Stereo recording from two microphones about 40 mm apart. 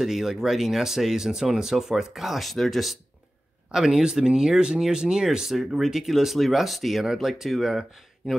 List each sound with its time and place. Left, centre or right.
0.0 s speech: centre
3.7 s speech: centre